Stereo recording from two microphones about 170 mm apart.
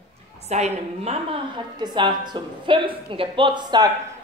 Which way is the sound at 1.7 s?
25° right (ahead or behind).